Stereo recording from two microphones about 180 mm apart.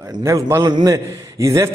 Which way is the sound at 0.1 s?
15° right (ahead or behind).